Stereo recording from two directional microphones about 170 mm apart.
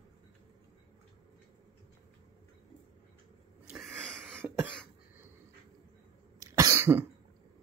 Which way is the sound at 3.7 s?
Centre (ahead or behind).